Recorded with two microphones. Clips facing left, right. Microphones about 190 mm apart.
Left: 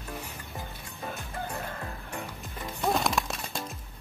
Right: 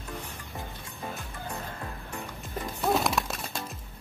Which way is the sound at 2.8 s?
Centre (ahead or behind).